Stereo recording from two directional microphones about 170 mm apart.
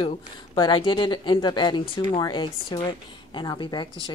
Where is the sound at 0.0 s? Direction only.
30° left (ahead or behind).